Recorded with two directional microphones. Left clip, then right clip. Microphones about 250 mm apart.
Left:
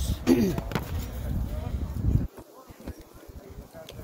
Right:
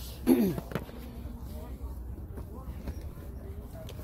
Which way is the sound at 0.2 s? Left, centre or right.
Centre.